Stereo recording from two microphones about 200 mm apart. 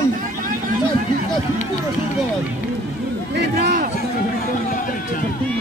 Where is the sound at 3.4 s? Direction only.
55° right (ahead or behind).